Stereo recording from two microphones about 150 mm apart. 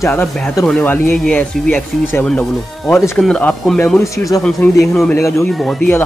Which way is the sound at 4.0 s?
20° left (ahead or behind).